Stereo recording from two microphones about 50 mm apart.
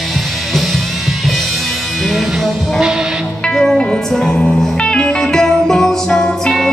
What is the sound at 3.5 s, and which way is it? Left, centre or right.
Music, centre.